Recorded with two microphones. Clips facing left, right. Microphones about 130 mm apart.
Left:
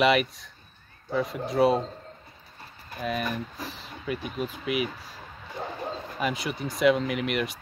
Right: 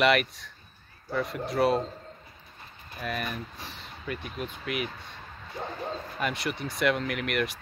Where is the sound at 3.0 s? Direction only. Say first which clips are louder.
Left 4 dB; centre (ahead or behind).